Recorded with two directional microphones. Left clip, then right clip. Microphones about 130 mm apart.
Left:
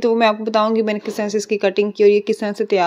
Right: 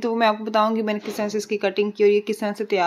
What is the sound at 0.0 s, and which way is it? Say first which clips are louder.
Speech: left 5 dB; 35° left (ahead or behind).